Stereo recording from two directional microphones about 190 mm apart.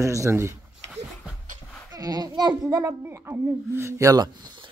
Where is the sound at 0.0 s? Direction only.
15° right (ahead or behind).